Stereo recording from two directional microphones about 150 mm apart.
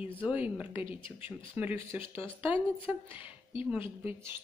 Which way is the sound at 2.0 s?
35° left (ahead or behind).